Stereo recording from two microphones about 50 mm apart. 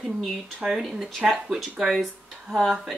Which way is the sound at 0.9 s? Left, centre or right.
Centre.